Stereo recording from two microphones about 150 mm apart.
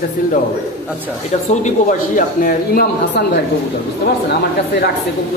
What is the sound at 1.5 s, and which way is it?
Speech, 55° left (ahead or behind).